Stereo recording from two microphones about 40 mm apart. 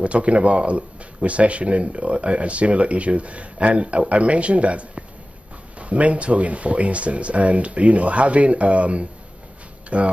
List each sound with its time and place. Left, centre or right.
0.0 s speech: right